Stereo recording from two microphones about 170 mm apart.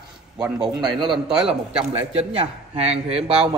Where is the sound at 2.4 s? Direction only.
40° right (ahead or behind).